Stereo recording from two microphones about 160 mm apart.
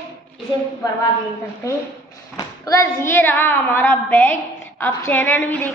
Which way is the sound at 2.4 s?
20° left (ahead or behind).